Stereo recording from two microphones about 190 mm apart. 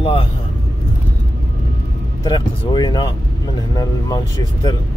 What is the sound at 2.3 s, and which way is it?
Speech, 20° left (ahead or behind).